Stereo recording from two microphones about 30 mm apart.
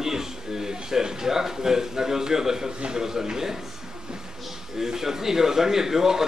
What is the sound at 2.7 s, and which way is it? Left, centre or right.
Speech, right.